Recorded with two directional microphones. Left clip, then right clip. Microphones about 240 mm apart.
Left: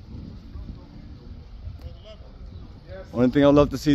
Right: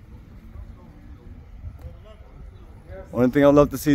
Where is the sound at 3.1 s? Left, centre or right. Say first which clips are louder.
Right 2 dB; centre.